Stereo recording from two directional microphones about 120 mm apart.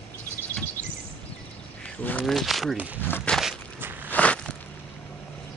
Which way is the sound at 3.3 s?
Centre (ahead or behind).